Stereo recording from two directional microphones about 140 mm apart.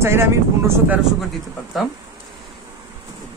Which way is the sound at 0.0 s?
20° right (ahead or behind).